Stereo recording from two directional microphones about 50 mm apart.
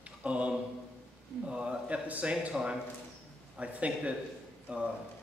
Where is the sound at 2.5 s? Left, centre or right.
Centre.